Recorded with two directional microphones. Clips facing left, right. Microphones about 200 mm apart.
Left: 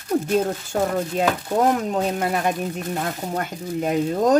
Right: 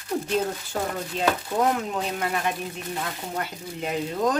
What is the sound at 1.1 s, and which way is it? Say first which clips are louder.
A woman's voice: left 2 dB; 40° left (ahead or behind).